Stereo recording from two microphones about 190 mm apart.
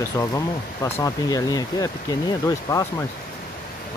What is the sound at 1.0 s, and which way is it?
Speech, 20° left (ahead or behind).